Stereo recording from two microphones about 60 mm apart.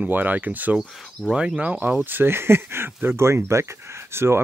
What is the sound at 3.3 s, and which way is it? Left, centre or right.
Speech, right.